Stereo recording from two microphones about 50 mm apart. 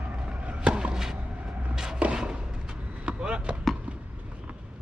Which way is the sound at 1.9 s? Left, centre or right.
Right.